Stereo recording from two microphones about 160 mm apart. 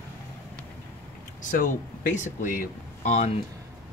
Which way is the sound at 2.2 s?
55° left (ahead or behind).